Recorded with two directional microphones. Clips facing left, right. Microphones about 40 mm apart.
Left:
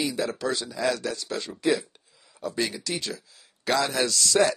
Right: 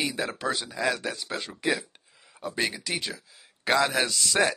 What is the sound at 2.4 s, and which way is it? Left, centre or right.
Speech, right.